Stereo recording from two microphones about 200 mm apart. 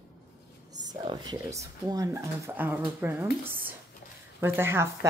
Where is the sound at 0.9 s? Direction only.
20° right (ahead or behind).